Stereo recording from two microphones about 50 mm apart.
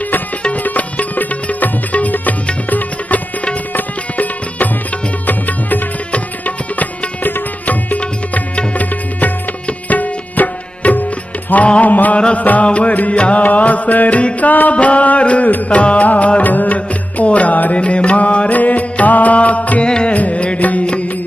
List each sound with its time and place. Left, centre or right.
0.7 s music: left
19.8 s music: centre